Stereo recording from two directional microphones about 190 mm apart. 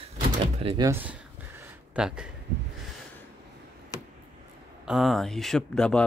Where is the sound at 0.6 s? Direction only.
30° right (ahead or behind).